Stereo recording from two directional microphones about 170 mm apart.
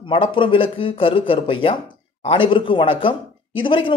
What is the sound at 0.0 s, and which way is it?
Speech, 30° left (ahead or behind).